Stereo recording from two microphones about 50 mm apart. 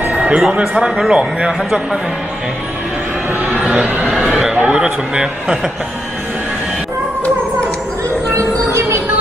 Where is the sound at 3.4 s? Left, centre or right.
Right.